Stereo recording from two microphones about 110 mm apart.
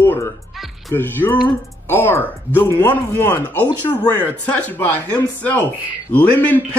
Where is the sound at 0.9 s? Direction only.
20° left (ahead or behind).